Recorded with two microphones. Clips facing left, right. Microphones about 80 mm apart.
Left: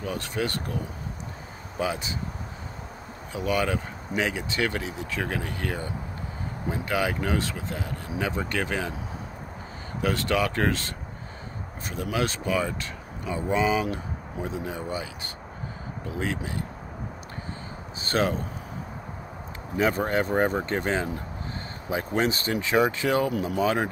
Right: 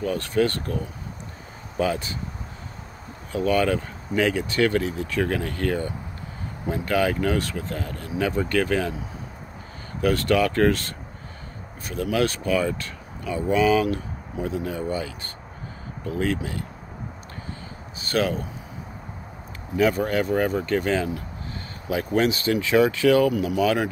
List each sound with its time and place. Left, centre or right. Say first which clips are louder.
0.0 s speech: right 7 dB; centre
1.8 s speech: right 4 dB; centre
3.3 s speech: right 5 dB; centre
10.0 s speech: right 5 dB; left
11.9 s speech: right 5 dB; centre
16.1 s speech: right 5 dB; centre
18.0 s speech: right 1 dB; left
19.8 s speech: right 3 dB; left